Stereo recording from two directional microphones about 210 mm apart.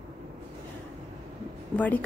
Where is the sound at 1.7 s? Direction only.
10° left (ahead or behind).